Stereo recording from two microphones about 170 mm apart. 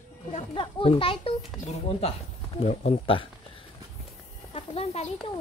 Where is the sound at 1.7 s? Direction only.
35° left (ahead or behind).